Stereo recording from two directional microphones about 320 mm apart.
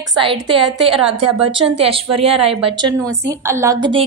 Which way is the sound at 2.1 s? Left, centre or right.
Centre.